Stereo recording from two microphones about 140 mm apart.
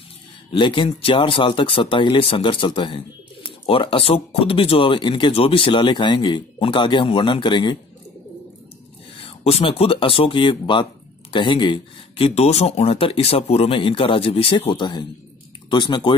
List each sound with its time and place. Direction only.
0.5 s speech: 35° left (ahead or behind)
9.2 s speech: 45° left (ahead or behind)